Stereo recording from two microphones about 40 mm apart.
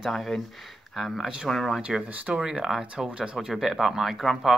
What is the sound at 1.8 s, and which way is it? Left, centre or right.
Speech, right.